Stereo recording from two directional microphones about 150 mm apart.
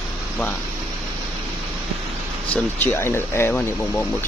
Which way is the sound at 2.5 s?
15° left (ahead or behind).